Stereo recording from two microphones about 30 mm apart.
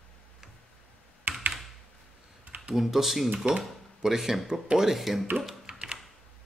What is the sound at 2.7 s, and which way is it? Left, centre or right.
Speech, centre.